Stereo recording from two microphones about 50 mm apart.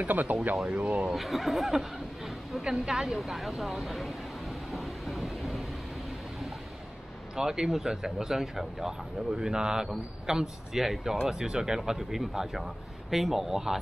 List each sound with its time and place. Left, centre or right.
0.0 s speech: right
1.1 s speech: centre
2.7 s a sound: centre
7.3 s speech: centre